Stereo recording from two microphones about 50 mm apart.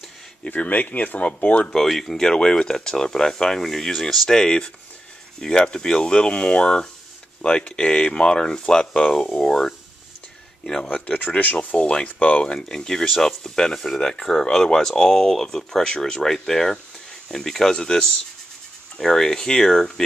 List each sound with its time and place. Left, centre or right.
0.4 s speech: left
1.8 s speech: centre
11.1 s speech: left
12.5 s speech: centre